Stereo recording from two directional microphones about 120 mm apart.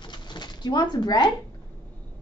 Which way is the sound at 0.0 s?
40° left (ahead or behind).